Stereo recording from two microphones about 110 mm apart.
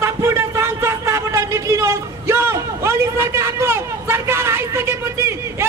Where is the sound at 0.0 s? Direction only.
25° right (ahead or behind).